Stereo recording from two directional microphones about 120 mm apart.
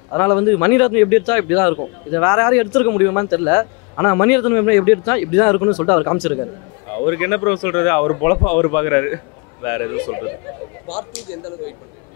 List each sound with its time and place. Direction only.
0.1 s a man's voice: 20° left (ahead or behind)